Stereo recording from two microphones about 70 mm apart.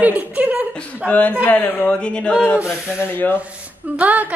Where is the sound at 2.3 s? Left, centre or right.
Centre.